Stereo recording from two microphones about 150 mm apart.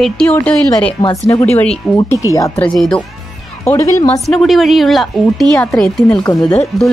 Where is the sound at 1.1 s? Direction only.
20° left (ahead or behind).